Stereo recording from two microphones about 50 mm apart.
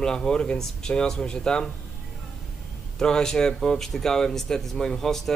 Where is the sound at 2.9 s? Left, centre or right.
Centre.